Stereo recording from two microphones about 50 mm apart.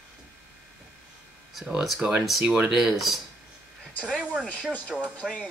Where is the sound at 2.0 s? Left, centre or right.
Right.